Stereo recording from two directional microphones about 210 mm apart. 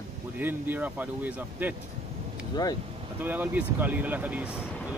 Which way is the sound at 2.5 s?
20° left (ahead or behind).